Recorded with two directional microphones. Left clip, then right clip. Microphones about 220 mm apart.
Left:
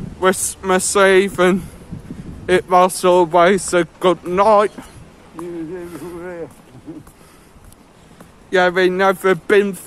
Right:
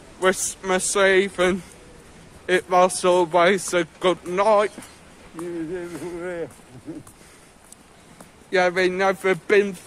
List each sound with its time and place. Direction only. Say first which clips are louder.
0.2 s speech: left 4 dB; 10° left (ahead or behind)
5.7 s a sound: left 1 dB; 40° right (ahead or behind)
8.5 s speech: left 5 dB; 10° left (ahead or behind)